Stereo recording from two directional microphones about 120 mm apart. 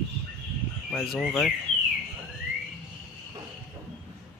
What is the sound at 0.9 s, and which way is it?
Speech, centre (ahead or behind).